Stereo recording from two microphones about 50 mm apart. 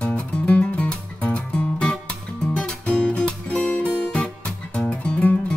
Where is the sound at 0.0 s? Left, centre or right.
Centre.